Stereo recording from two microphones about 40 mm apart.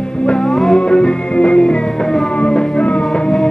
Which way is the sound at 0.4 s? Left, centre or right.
Centre.